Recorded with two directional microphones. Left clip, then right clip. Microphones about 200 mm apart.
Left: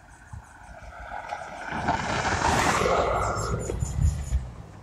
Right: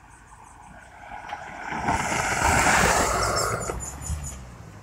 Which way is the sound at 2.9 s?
55° right (ahead or behind).